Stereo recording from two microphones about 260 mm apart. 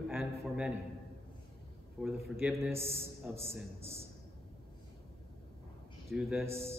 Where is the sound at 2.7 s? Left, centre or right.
Right.